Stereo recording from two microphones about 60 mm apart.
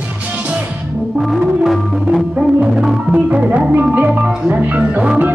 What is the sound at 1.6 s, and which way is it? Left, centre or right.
Music, centre.